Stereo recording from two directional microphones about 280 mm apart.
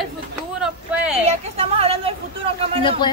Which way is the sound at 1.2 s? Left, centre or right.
Right.